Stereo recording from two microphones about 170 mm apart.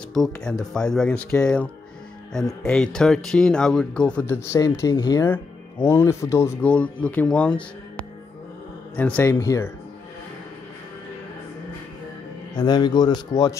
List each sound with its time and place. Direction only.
0.1 s a man's voice: 5° left (ahead or behind); by 5.2 s 25° left (ahead or behind)
5.2 s speech: 10° left (ahead or behind)
8.9 s speech: 10° left (ahead or behind)
12.5 s speech: 25° left (ahead or behind)